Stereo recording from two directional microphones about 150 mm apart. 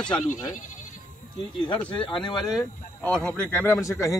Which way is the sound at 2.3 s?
Centre (ahead or behind).